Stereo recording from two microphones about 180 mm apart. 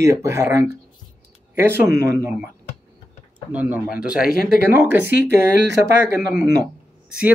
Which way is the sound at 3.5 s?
10° right (ahead or behind).